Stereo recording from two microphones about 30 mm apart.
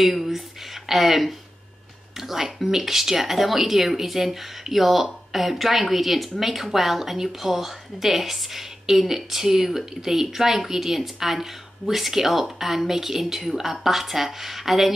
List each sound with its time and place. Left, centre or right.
0.0 s a woman's voice: centre